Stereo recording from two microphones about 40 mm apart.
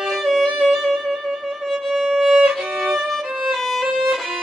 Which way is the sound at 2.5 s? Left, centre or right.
Centre.